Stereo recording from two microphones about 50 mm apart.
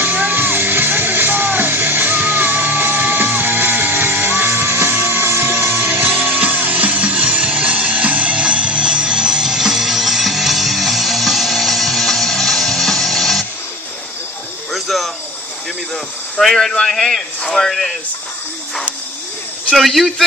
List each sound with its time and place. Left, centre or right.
0.0 s music: right
6.3 s music: right; by 13.5 s centre
14.7 s a sound: centre
16.3 s a man's voice: centre
19.7 s a man's voice: centre